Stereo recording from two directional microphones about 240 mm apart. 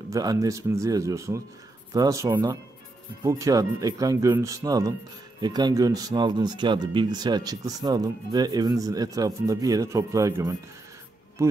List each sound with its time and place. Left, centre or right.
0.1 s speech: centre